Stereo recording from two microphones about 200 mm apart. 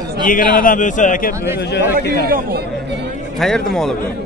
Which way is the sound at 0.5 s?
40° left (ahead or behind).